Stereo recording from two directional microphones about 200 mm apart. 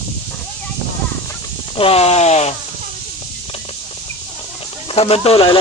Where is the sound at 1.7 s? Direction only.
30° left (ahead or behind).